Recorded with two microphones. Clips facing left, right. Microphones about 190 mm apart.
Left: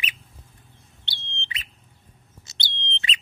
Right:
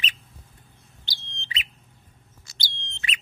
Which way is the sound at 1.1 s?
40° right (ahead or behind).